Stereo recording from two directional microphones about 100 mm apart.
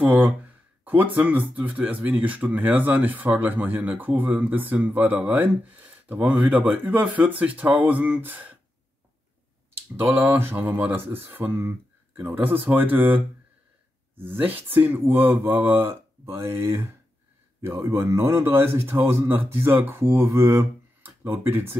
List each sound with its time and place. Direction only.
0.0 s speech: 15° right (ahead or behind)
9.9 s speech: 20° right (ahead or behind)
14.2 s speech: 20° right (ahead or behind)